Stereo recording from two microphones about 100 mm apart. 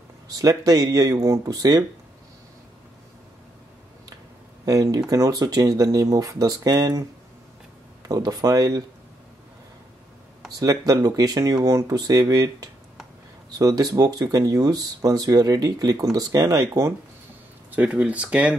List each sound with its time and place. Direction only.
0.4 s speech: 40° right (ahead or behind)
4.6 s speech: 35° right (ahead or behind)
8.1 s speech: 40° right (ahead or behind)
10.6 s speech: 35° right (ahead or behind)
17.6 s speech: 15° right (ahead or behind)